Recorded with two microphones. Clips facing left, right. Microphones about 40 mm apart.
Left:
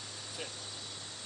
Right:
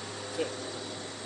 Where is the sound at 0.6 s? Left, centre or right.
Right.